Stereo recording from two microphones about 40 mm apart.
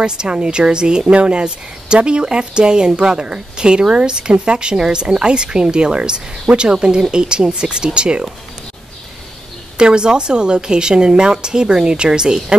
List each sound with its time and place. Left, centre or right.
0.0 s speech: right
9.8 s speech: right